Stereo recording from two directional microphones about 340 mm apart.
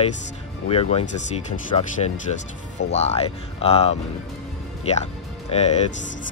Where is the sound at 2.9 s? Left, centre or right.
Centre.